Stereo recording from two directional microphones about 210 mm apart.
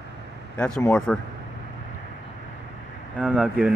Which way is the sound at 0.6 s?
5° left (ahead or behind).